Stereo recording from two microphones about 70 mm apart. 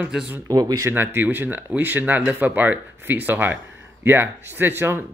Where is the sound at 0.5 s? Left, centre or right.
Right.